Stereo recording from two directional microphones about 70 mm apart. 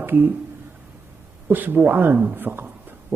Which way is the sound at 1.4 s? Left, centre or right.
Right.